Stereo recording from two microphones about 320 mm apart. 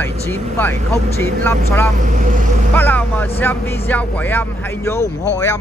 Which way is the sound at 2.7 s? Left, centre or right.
Centre.